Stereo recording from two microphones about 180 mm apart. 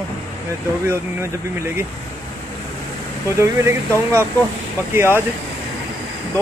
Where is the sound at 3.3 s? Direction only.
15° right (ahead or behind).